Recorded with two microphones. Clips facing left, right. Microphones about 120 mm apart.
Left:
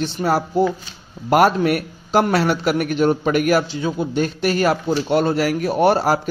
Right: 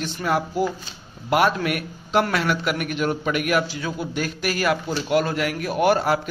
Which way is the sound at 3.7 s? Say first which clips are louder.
Left 6 dB; 25° left (ahead or behind).